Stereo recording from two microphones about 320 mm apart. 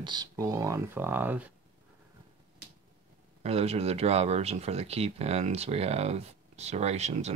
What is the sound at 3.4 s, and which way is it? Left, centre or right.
Speech, centre.